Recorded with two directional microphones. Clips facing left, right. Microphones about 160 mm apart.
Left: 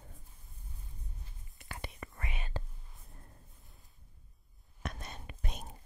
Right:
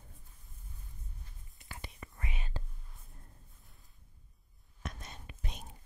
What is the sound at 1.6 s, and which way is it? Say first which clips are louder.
Whispering: left 4 dB; 65° left (ahead or behind).